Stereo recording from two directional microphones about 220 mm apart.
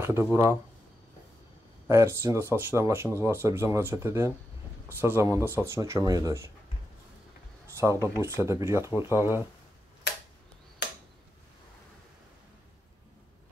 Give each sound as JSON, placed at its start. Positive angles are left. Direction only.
{"t": 0.0, "sound": "speech", "side_deg": -10}
{"t": 1.9, "sound": "speech", "side_deg": -10}
{"t": 7.7, "sound": "speech", "side_deg": -15}